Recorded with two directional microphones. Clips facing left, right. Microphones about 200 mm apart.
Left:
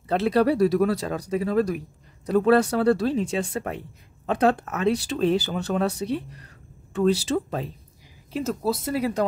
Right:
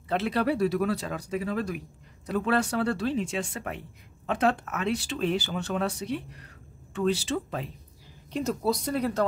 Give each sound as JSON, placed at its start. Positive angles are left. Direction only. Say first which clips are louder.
{"t": 0.1, "sound": "speech", "louder": "left 6 dB", "side_deg": 40}
{"t": 8.3, "sound": "speech", "louder": "left 2 dB", "side_deg": 5}